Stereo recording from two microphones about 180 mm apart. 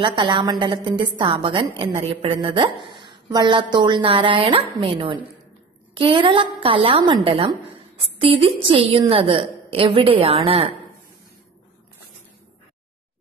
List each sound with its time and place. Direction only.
0.0 s a woman's voice: 25° right (ahead or behind)